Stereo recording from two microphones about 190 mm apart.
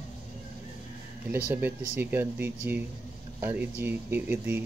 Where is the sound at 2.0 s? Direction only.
10° right (ahead or behind).